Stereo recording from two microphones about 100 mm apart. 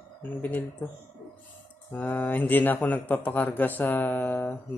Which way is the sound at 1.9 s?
15° left (ahead or behind).